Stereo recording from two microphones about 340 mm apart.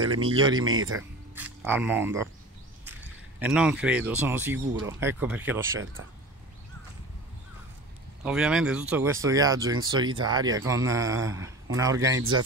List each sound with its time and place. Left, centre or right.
0.0 s speech: right
0.3 s speech: centre
0.7 s speech: right
1.3 s speech: centre
3.3 s speech: centre
8.2 s speech: centre